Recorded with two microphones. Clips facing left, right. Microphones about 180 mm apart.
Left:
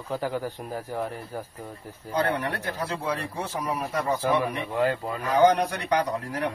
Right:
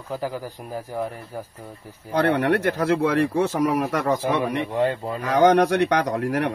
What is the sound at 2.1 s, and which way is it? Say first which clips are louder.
Speech: right 7 dB; 80° right.